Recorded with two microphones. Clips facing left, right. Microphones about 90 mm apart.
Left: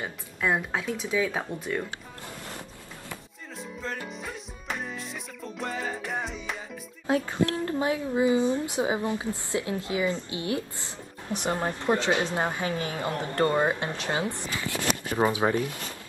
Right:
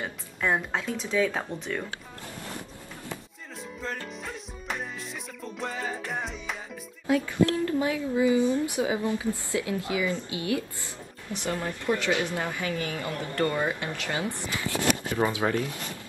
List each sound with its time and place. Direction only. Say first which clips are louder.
0.0 s speech: even; 5° left (ahead or behind)
3.5 s music: even; centre (ahead or behind)
7.1 s speech: right 2 dB; 30° left (ahead or behind)